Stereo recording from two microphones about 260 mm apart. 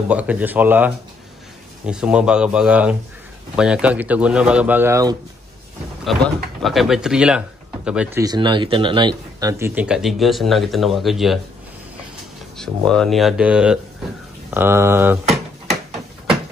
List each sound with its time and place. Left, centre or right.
0.1 s speech: centre
6.0 s speech: centre
12.5 s speech: centre
15.2 s drawer open or close: right